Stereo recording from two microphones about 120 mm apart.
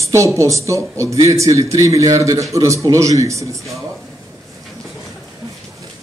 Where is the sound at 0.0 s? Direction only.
25° right (ahead or behind).